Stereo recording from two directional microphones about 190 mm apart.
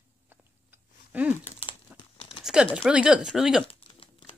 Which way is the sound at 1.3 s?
35° left (ahead or behind).